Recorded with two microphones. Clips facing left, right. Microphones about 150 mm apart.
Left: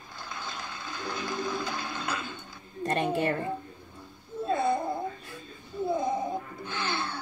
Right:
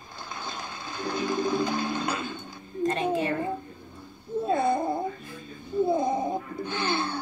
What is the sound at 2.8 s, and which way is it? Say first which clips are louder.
Speech: right 1 dB; 60° left (ahead or behind).